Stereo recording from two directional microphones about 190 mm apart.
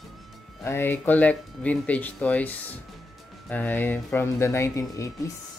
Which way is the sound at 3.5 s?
10° left (ahead or behind).